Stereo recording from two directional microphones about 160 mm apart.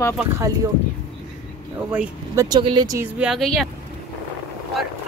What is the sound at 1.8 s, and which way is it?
Speech, 5° right (ahead or behind).